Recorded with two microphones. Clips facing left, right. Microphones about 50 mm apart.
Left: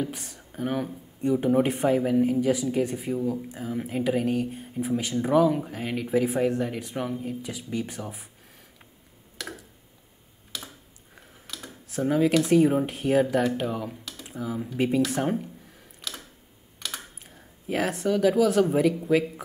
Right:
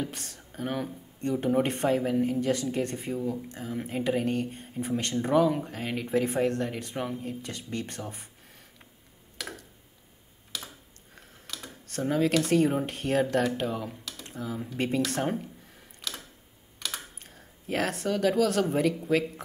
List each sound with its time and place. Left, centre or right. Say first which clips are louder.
0.0 s speech: left 3 dB; centre
9.4 s a sound: left 2 dB; centre
11.1 s speech: left 1 dB; centre